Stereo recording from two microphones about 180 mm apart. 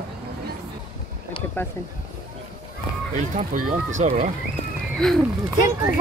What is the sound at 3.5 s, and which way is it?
Speech, 45° right (ahead or behind).